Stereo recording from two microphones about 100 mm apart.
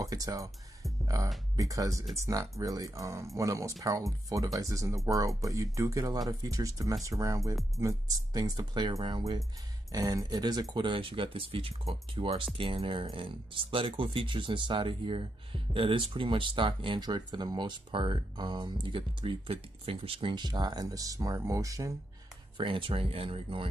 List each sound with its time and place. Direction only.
0.0 s music: 35° right (ahead or behind)
1.0 s speech: 35° right (ahead or behind)
9.9 s speech: 35° right (ahead or behind)
10.8 s speech: 60° right (ahead or behind); by 21.9 s 35° right (ahead or behind)
22.6 s speech: 60° right (ahead or behind)